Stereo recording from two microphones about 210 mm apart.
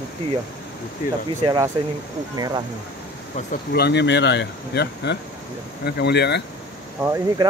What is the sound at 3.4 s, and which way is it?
Speech, 35° left (ahead or behind).